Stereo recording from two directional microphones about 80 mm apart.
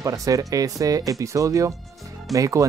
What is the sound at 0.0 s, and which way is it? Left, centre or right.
Speech, right.